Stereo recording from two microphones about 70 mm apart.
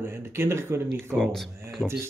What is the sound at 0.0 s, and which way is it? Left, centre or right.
Speech, right.